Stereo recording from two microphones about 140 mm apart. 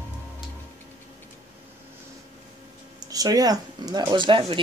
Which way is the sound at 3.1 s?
25° right (ahead or behind).